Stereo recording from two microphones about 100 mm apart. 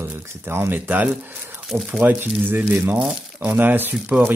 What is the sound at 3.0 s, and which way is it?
Speech, 15° right (ahead or behind).